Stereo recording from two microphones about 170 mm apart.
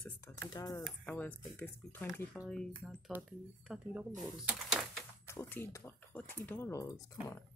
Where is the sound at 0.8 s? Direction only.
10° left (ahead or behind).